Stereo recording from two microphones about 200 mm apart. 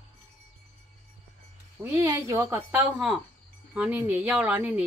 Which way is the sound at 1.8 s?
15° right (ahead or behind).